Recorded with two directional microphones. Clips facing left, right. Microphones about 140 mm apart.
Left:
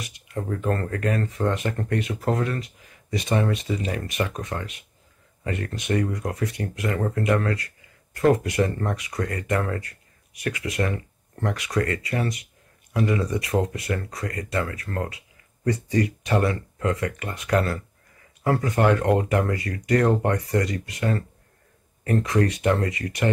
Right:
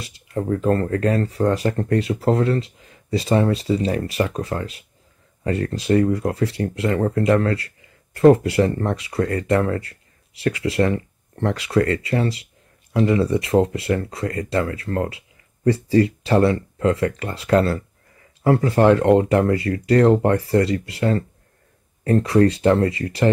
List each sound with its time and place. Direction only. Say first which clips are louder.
0.0 s speech: right 6 dB; 30° right (ahead or behind)